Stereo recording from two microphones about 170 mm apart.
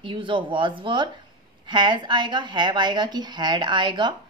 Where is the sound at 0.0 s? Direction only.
30° right (ahead or behind).